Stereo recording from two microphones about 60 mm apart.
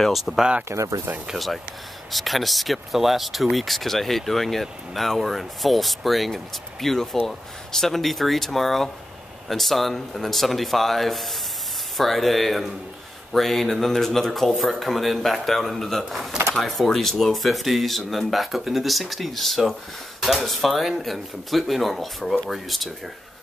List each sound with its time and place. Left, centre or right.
0.0 s speech: centre
0.7 s speech: right
1.2 s speech: centre